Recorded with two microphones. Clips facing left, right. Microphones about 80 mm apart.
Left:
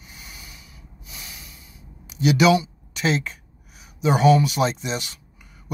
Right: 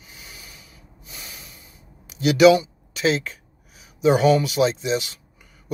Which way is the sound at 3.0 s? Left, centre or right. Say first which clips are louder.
Right 2 dB; left.